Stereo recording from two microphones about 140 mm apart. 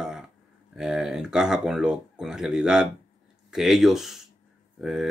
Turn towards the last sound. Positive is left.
turn(degrees=-5)  # may be behind; listen again after turning